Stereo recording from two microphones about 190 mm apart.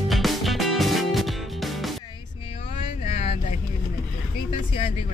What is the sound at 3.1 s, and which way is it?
Music, 35° left (ahead or behind).